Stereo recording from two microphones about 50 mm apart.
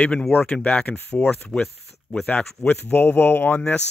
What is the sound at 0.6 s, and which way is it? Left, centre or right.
Speech, left.